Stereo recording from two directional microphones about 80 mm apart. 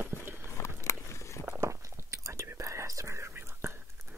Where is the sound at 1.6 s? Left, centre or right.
Right.